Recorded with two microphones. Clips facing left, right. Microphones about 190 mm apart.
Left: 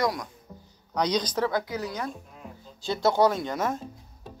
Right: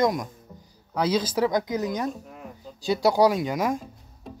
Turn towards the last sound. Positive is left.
turn(degrees=-10)  # may be behind; listen again after turning